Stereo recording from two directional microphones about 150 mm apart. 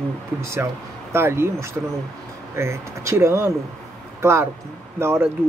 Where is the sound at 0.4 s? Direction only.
20° right (ahead or behind).